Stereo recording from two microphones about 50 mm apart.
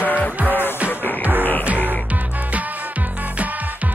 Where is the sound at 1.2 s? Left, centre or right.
Right.